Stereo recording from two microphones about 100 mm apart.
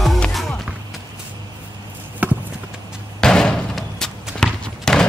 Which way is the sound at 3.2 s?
5° left (ahead or behind).